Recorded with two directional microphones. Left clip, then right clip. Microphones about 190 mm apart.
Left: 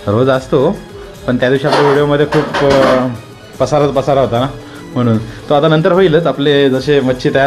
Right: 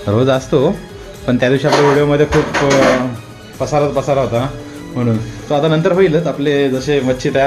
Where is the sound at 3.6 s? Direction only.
35° left (ahead or behind).